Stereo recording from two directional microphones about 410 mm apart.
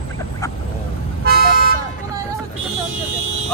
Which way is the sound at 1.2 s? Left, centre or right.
Right.